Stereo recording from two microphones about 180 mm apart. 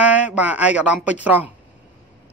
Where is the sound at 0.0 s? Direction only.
10° right (ahead or behind).